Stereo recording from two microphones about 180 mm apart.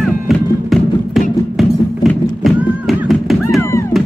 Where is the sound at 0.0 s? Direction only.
Centre (ahead or behind).